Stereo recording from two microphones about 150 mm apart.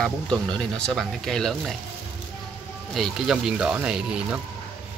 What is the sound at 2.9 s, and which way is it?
Speech, centre (ahead or behind).